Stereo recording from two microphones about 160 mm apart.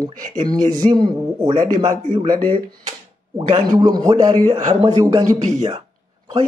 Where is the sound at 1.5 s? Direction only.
50° right (ahead or behind).